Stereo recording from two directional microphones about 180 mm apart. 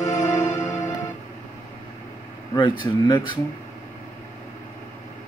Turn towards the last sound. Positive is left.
turn(degrees=25)  # may be behind; listen again after turning